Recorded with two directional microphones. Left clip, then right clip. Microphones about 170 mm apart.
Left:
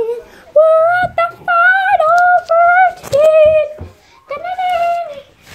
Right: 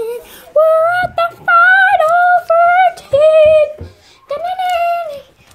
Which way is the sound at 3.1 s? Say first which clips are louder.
Even; 10° right (ahead or behind).